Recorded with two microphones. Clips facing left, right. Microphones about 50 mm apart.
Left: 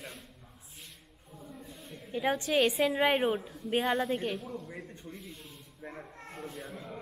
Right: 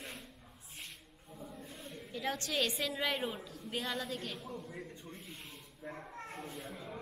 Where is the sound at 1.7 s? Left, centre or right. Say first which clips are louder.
Even; centre.